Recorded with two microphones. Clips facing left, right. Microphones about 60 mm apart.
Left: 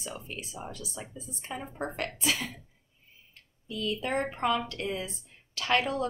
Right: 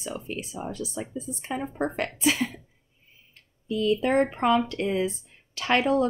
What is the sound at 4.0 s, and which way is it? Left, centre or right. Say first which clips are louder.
Speech: right 7 dB; right.